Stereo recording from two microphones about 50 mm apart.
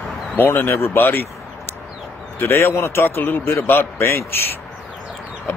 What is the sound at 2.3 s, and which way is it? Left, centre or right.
A man's voice, left.